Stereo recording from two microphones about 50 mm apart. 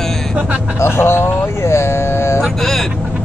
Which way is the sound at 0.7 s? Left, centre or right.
Left.